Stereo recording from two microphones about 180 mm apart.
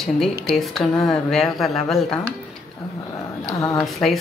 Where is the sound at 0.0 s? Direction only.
Centre (ahead or behind).